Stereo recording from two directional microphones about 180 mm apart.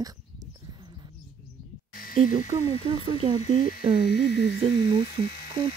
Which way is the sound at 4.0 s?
65° left (ahead or behind).